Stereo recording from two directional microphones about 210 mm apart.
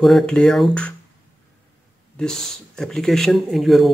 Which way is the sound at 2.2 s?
5° left (ahead or behind).